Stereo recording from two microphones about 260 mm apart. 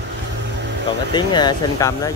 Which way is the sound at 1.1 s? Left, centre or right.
Centre.